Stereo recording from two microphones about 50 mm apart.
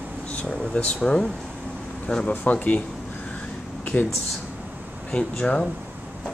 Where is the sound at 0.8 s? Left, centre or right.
Left.